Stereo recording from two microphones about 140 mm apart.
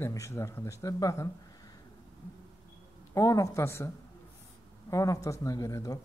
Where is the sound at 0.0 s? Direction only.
20° left (ahead or behind).